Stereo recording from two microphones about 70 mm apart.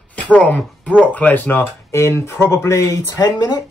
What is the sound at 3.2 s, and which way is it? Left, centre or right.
Speech, left.